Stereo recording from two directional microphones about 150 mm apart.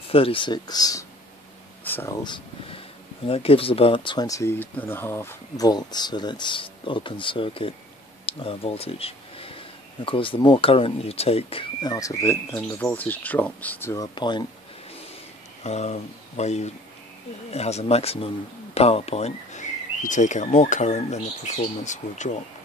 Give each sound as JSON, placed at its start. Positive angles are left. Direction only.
{"t": 0.1, "sound": "speech", "side_deg": 35}
{"t": 1.9, "sound": "speech", "side_deg": 15}
{"t": 2.2, "sound": "speech", "side_deg": 30}
{"t": 5.7, "sound": "speech", "side_deg": 25}
{"t": 14.0, "sound": "speech", "side_deg": 30}
{"t": 15.6, "sound": "speech", "side_deg": 50}